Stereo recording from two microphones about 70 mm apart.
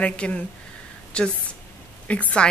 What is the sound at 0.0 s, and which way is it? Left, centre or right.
A woman's voice, centre.